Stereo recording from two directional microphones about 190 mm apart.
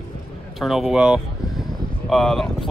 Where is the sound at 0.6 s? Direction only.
Centre (ahead or behind).